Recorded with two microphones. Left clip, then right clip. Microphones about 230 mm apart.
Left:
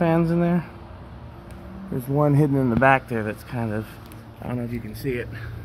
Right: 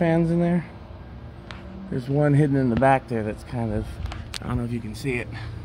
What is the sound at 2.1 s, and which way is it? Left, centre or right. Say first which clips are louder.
Speech: left 1 dB; centre.